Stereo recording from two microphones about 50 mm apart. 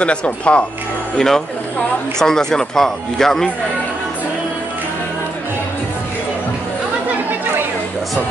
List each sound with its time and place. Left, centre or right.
0.0 s speech: left
1.1 s speech: centre